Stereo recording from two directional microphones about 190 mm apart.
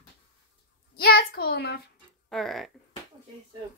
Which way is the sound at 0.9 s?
55° left (ahead or behind).